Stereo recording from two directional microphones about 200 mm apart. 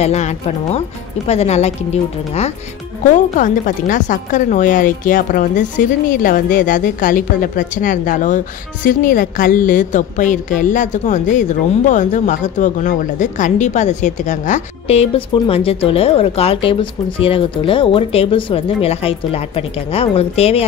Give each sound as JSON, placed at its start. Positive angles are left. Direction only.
{"t": 0.0, "sound": "a woman's voice", "side_deg": 35}